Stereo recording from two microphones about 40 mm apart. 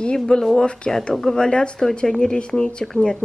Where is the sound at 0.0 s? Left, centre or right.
Left.